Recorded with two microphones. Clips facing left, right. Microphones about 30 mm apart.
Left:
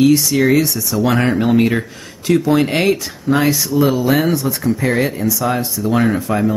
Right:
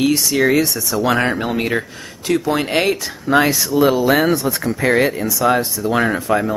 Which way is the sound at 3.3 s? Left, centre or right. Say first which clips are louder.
Even; right.